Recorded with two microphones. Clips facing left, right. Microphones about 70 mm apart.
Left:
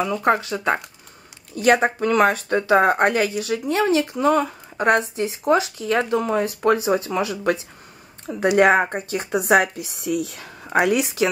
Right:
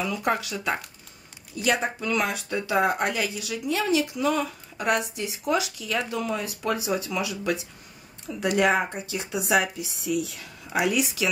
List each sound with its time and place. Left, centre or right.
0.0 s speech: left
1.5 s speech: left
10.4 s speech: left